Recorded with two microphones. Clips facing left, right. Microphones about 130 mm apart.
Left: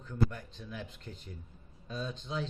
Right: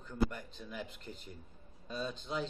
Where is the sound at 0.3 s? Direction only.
5° right (ahead or behind).